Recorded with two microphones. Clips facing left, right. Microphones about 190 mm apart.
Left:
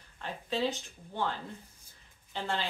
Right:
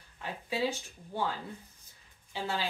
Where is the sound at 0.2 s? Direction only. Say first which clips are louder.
Even; 10° right (ahead or behind).